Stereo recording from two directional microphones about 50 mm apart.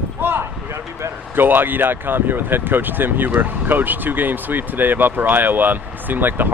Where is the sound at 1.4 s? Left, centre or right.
Right.